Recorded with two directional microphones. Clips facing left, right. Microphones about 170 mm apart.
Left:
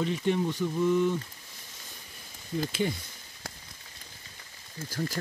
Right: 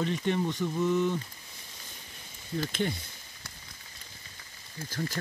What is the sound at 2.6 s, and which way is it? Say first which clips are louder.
Speech: left 1 dB; 10° left (ahead or behind).